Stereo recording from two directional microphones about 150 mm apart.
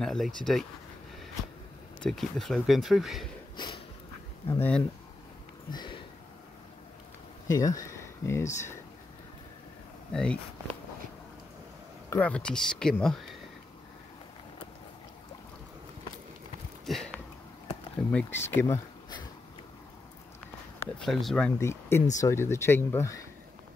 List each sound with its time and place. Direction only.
0.0 s speech: 5° left (ahead or behind)
2.0 s speech: centre (ahead or behind)
3.5 s a sound: 35° left (ahead or behind)
4.6 s speech: 10° left (ahead or behind)
5.7 s a sound: 30° left (ahead or behind)
7.4 s speech: 25° left (ahead or behind)
10.1 s speech: 5° left (ahead or behind)
12.1 s speech: 10° left (ahead or behind)
16.8 s a sound: 5° left (ahead or behind)
17.6 s speech: 15° left (ahead or behind)
21.0 s speech: centre (ahead or behind)
21.5 s speech: 15° left (ahead or behind)